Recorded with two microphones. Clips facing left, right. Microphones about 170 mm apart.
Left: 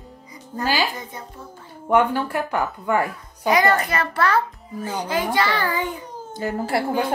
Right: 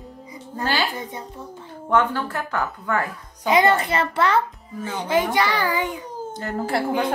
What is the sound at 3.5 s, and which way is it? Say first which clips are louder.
A child's voice: right 1 dB; 25° right (ahead or behind).